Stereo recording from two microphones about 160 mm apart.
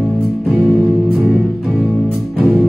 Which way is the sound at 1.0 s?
Centre (ahead or behind).